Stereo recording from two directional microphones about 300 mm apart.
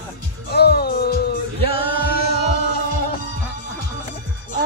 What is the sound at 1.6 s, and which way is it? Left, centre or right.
A capella, centre.